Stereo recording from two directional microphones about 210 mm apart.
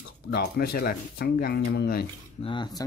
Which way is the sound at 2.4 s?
20° left (ahead or behind).